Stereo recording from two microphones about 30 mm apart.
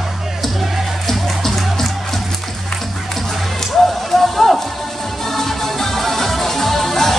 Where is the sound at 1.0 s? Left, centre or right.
Centre.